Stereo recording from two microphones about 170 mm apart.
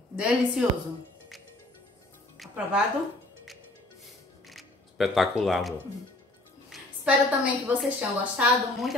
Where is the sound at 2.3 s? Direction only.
5° right (ahead or behind).